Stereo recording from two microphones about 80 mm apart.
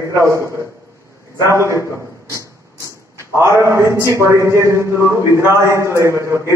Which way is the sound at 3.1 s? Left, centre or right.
Right.